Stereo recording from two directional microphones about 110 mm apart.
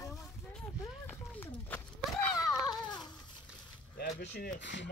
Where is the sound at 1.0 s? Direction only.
15° left (ahead or behind).